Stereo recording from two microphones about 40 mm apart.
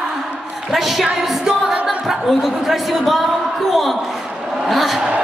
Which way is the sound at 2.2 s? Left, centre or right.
Centre.